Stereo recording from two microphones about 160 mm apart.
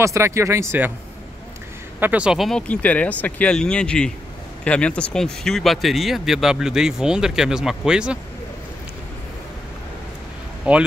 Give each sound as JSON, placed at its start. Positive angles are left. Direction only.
{"t": 0.0, "sound": "speech", "side_deg": -20}
{"t": 2.0, "sound": "speech", "side_deg": -10}
{"t": 10.6, "sound": "speech", "side_deg": -5}